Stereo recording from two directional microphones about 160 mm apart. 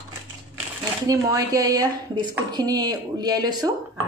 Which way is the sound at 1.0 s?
20° right (ahead or behind).